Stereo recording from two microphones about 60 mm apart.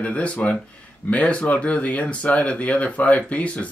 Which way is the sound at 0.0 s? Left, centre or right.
Left.